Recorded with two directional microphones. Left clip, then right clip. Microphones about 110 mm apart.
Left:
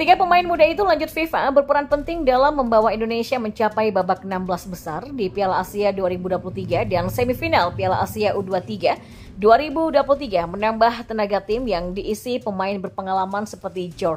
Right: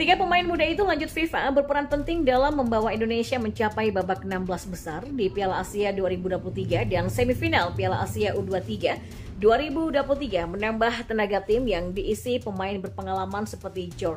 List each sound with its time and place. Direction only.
0.0 s a woman's voice: 50° left (ahead or behind)
5.2 s a woman's voice: 45° left (ahead or behind)